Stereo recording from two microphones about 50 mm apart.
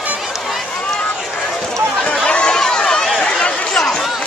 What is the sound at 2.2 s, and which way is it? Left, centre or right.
Run, centre.